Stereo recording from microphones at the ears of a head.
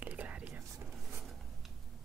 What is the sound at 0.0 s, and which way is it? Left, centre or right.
Whispering, right.